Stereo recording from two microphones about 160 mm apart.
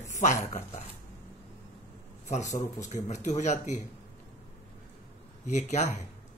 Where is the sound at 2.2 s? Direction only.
45° left (ahead or behind).